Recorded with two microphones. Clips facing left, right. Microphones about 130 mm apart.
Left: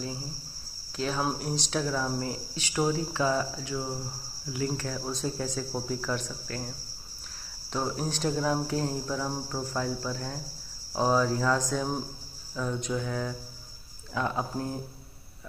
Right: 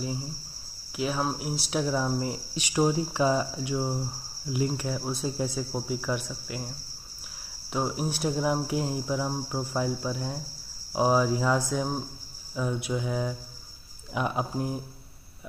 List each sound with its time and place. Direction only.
0.9 s speech: 10° right (ahead or behind)
7.7 s speech: 10° right (ahead or behind)